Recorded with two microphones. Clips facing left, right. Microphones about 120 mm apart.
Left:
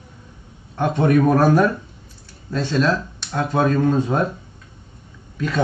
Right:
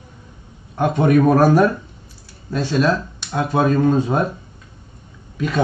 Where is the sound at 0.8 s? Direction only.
10° right (ahead or behind).